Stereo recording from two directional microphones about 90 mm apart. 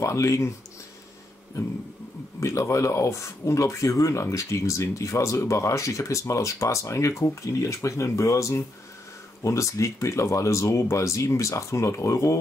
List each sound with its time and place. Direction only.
0.0 s speech: 35° left (ahead or behind)
2.4 s speech: 35° left (ahead or behind)